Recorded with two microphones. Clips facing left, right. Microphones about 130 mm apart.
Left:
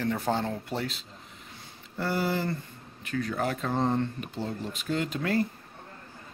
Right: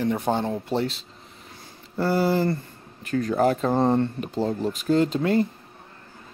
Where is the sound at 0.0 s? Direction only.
20° right (ahead or behind).